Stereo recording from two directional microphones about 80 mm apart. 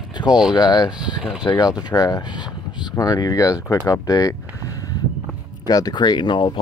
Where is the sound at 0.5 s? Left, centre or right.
Left.